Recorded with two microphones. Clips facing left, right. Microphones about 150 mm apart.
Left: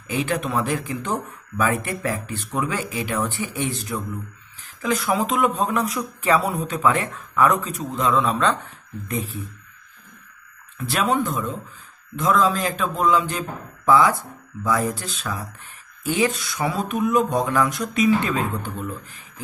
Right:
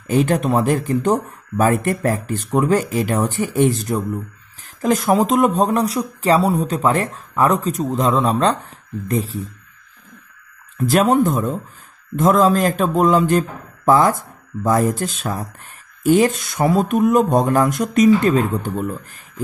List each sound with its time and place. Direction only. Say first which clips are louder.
0.0 s a man's voice: right 7 dB; 45° right (ahead or behind)
10.8 s a man's voice: right 7 dB; 45° right (ahead or behind)